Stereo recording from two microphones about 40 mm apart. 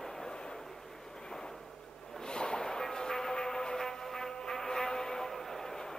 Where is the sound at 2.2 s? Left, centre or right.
Left.